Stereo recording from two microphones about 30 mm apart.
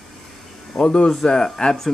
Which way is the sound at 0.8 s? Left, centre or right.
Left.